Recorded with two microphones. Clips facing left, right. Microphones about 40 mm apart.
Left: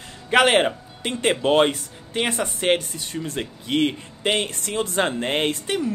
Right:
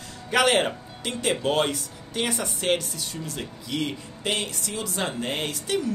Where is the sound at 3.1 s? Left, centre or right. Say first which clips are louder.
Left 5 dB; left.